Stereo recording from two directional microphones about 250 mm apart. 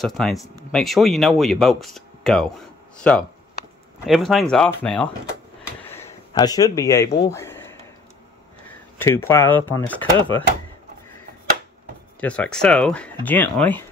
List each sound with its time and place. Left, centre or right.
0.0 s speech: centre
5.9 s a sound: centre
8.6 s speech: centre
10.1 s speech: centre
12.2 s speech: centre